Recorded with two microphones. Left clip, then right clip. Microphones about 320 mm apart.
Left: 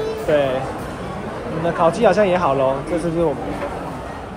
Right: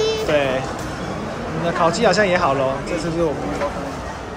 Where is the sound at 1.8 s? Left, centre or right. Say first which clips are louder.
Left 2 dB; centre.